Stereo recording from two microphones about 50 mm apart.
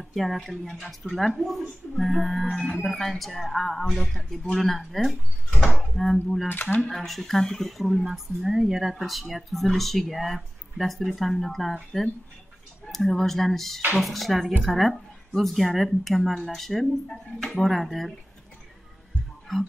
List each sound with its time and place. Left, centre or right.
0.1 s a woman's voice: centre
2.5 s speech: centre
2.9 s a woman's voice: centre
6.5 s speech: left
6.8 s speech: centre
8.0 s a woman's voice: centre
19.5 s music: centre